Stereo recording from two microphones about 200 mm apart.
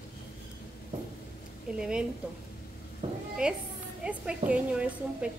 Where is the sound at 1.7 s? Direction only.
5° right (ahead or behind).